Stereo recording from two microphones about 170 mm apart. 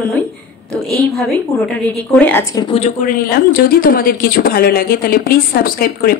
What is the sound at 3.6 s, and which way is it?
A woman's voice, 55° left (ahead or behind).